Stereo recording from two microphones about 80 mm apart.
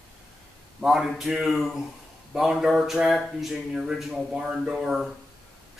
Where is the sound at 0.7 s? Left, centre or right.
Centre.